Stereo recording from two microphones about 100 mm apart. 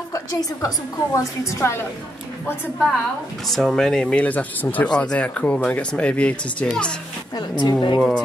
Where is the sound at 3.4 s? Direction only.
5° left (ahead or behind).